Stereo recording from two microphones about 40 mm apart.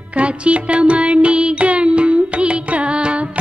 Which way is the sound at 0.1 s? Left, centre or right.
Right.